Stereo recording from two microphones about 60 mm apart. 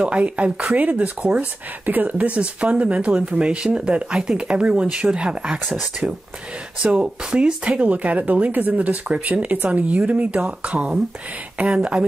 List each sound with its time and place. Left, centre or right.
0.0 s speech: right
6.8 s speech: centre